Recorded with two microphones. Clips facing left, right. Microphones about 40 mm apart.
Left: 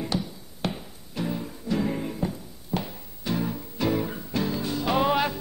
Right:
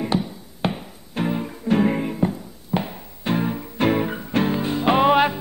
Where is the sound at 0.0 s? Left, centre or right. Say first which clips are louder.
Right 6 dB; right.